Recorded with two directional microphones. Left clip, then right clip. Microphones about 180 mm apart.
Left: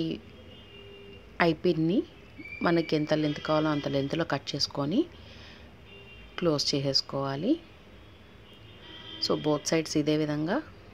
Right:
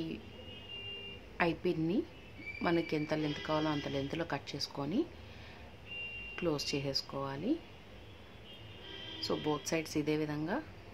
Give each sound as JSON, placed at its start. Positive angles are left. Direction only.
{"t": 1.3, "sound": "speech", "side_deg": 30}
{"t": 6.3, "sound": "speech", "side_deg": 25}
{"t": 9.2, "sound": "speech", "side_deg": 25}